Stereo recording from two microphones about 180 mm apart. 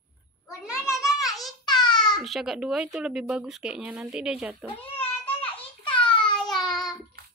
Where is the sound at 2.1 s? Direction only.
Centre (ahead or behind).